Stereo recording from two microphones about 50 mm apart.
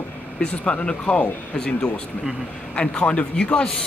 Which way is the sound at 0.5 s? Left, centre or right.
Left.